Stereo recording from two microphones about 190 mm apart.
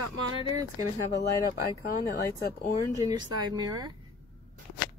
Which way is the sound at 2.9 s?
20° right (ahead or behind).